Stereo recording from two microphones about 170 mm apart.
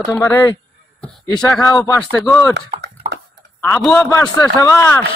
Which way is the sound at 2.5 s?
85° right.